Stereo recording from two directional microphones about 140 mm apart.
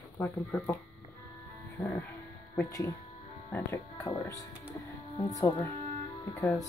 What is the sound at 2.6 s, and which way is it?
A woman's voice, 25° left (ahead or behind).